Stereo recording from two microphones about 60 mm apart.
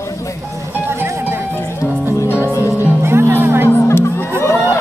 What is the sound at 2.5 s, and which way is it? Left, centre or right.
Music, left.